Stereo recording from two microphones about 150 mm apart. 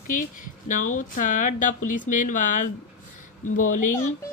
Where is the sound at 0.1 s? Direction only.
60° left (ahead or behind).